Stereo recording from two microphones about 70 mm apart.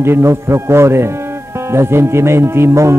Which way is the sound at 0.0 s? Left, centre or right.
Right.